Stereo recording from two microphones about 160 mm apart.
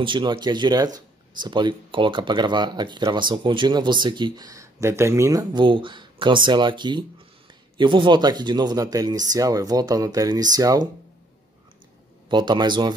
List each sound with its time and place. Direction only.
0.0 s speech: 30° right (ahead or behind)
12.3 s speech: 25° right (ahead or behind)